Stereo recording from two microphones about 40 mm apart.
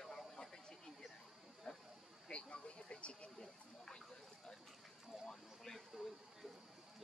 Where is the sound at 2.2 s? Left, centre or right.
Left.